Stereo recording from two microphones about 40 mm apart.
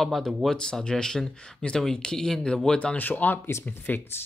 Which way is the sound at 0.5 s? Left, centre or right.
Centre.